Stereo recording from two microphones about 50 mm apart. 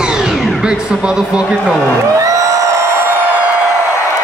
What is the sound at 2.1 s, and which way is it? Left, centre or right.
Music, right.